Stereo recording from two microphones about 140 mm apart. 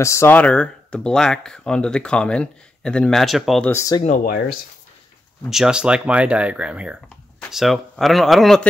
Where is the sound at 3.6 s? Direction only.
20° left (ahead or behind).